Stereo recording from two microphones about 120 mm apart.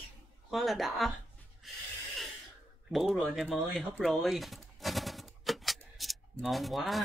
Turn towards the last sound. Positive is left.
turn(degrees=0)  # may be behind; listen again after turning